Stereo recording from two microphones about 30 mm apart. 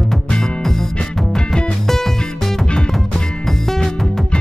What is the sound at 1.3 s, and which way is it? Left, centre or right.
Music, left.